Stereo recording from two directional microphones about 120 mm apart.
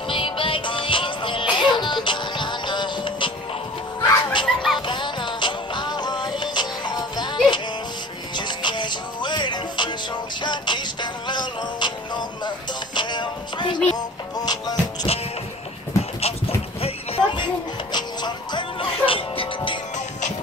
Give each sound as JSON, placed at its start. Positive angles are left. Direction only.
{"t": 0.1, "sound": "music", "side_deg": 45}
{"t": 4.0, "sound": "a sound", "side_deg": 40}
{"t": 4.7, "sound": "music", "side_deg": 40}
{"t": 15.1, "sound": "music", "side_deg": 55}
{"t": 16.0, "sound": "a sound", "side_deg": 60}
{"t": 17.9, "sound": "music", "side_deg": 40}